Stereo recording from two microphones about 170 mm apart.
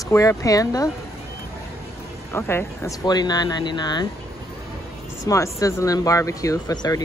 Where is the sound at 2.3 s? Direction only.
15° left (ahead or behind).